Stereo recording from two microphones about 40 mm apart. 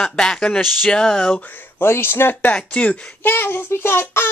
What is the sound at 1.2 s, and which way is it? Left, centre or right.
Speech, left.